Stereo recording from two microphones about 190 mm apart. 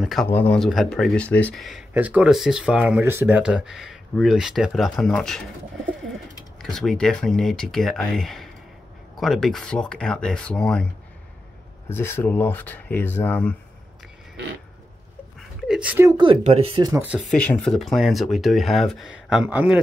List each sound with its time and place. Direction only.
0.0 s speech: centre (ahead or behind)
6.6 s speech: centre (ahead or behind)
11.9 s speech: 10° left (ahead or behind)
15.7 s speech: 5° right (ahead or behind)
16.1 s speech: 25° right (ahead or behind)
17.3 s speech: 5° left (ahead or behind)